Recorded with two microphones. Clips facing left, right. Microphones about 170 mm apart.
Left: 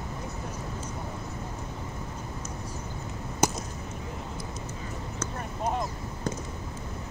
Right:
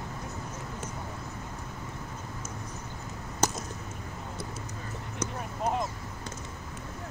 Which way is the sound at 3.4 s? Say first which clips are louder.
Left 3 dB; 10° left (ahead or behind).